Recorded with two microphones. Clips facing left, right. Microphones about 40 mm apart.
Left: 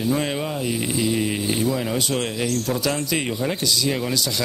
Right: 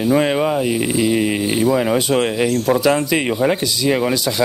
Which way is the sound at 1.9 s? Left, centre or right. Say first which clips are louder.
Right 7 dB; centre.